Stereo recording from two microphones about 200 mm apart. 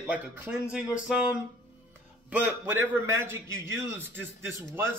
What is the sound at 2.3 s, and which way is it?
A man's voice, 10° right (ahead or behind).